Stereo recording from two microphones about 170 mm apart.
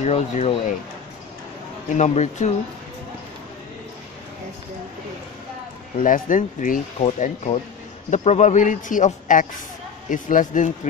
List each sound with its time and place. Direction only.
0.0 s speech: 45° left (ahead or behind)
2.0 s speech: 45° left (ahead or behind)
6.0 s speech: 50° left (ahead or behind)